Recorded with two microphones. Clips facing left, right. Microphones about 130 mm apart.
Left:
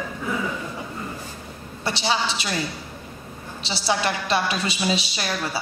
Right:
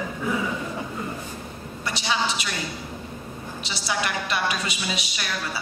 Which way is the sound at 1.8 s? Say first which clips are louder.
Left 2 dB; 30° left (ahead or behind).